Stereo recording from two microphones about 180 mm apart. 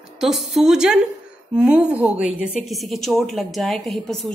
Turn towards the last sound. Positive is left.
turn(degrees=0)  # may be behind; listen again after turning